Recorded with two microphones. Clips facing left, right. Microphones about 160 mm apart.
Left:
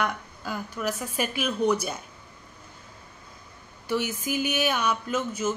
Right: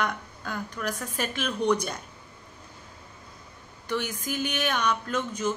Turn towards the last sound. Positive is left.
turn(degrees=5)  # may be behind; listen again after turning